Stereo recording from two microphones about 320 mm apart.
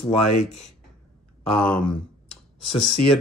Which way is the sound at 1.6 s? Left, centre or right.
Centre.